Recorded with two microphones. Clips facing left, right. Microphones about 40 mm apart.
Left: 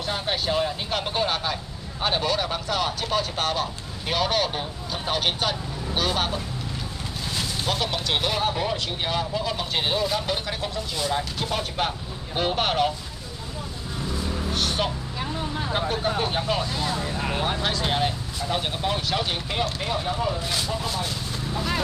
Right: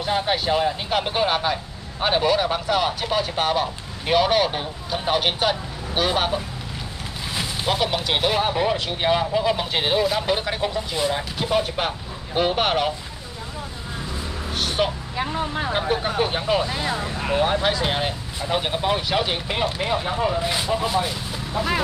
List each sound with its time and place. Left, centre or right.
0.0 s speech: centre
14.5 s music: centre
15.1 s speech: right